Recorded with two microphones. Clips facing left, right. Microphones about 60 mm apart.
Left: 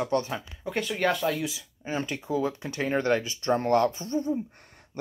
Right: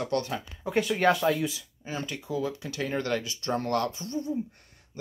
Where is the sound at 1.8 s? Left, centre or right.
Left.